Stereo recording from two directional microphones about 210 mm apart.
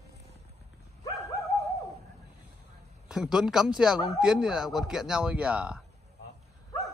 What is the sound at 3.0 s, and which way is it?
Speech, 5° right (ahead or behind).